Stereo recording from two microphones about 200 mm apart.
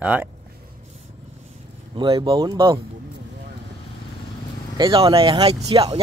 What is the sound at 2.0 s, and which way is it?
Speech, 20° right (ahead or behind).